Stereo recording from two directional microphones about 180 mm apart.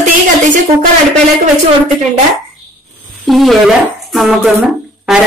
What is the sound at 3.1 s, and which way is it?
Speech, centre (ahead or behind).